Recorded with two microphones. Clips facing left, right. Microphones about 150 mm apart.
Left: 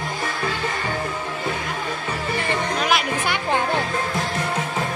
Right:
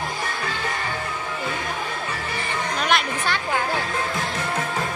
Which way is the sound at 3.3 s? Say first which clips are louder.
Left 3 dB; 25° left (ahead or behind).